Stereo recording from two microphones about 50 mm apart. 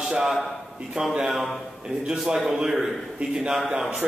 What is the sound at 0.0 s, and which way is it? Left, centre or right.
A man's voice, centre.